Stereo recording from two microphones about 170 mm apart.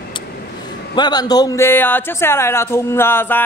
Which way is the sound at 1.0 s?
25° left (ahead or behind).